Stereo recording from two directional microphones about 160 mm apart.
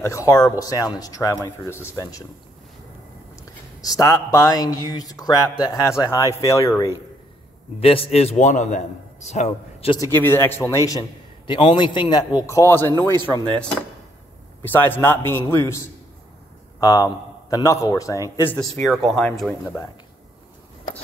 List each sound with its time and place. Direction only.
0.0 s speech: 20° left (ahead or behind)
3.8 s speech: 20° left (ahead or behind)
7.8 s a man's voice: 35° left (ahead or behind)
10.1 s a man's voice: 15° left (ahead or behind)
10.9 s speech: 30° left (ahead or behind)
13.1 s speech: 25° right (ahead or behind)
14.6 s a man's voice: 10° left (ahead or behind)
16.8 s speech: 25° left (ahead or behind)
18.6 s speech: centre (ahead or behind)